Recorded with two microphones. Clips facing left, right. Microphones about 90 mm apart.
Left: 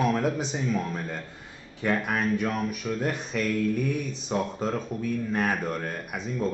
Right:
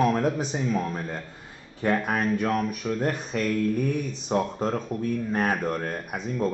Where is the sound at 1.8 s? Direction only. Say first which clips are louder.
Right 2 dB; 40° right (ahead or behind).